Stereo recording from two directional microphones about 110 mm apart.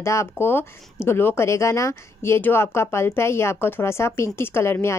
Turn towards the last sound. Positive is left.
turn(degrees=25)  # may be behind; listen again after turning